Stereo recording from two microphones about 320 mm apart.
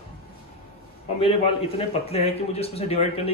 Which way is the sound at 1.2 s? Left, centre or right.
Centre.